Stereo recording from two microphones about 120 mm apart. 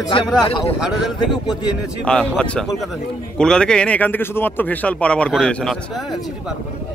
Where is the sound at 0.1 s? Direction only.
45° left (ahead or behind).